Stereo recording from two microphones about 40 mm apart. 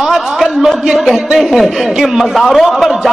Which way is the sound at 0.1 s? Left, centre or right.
Centre.